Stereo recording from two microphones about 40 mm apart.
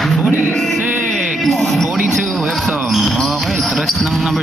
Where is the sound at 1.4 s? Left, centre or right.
Centre.